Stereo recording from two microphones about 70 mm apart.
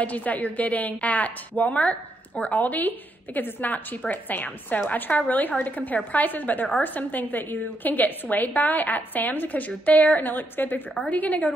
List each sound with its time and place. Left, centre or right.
0.0 s a woman's voice: left